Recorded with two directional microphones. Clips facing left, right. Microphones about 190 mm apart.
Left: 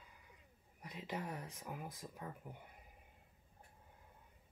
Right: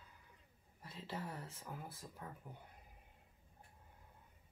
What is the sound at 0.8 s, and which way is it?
Speech, 15° left (ahead or behind).